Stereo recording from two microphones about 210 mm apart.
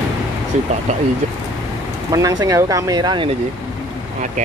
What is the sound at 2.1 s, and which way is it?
Speech, 15° right (ahead or behind).